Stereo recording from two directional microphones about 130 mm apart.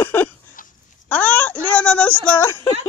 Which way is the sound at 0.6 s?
90° left.